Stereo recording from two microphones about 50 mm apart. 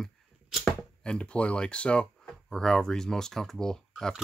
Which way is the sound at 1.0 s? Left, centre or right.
Left.